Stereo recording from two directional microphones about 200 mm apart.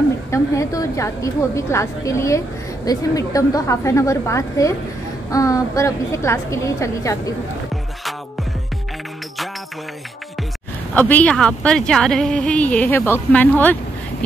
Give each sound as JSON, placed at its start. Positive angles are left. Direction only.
{"t": 0.3, "sound": "a woman's voice", "side_deg": 15}
{"t": 11.0, "sound": "speech", "side_deg": 10}